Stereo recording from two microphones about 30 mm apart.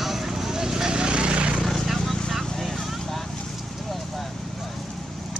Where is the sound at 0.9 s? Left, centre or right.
Right.